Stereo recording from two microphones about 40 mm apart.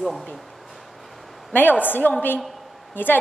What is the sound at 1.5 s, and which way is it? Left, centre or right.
A woman's voice, left.